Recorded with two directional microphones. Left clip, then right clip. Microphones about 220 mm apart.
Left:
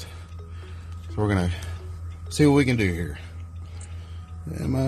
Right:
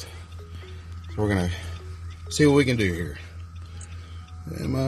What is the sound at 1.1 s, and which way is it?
A man's voice, 5° right (ahead or behind).